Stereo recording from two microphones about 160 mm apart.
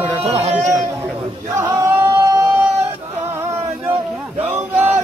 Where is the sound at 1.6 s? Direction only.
15° right (ahead or behind).